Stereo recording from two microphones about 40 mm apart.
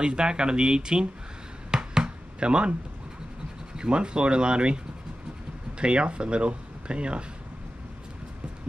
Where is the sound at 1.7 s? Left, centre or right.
Centre.